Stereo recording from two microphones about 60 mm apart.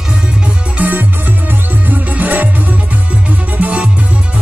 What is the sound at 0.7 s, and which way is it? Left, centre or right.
Music, right.